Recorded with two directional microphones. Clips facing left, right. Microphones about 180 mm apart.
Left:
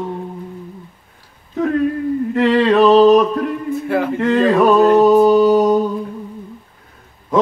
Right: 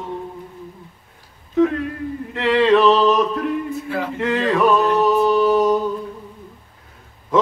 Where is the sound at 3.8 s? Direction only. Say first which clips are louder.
Left 9 dB; 55° left (ahead or behind); by 5.8 s 35° left (ahead or behind).